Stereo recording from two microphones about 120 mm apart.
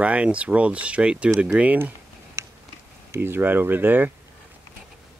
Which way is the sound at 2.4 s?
20° right (ahead or behind).